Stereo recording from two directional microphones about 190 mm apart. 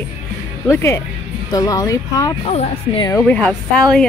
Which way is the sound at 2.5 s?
35° left (ahead or behind).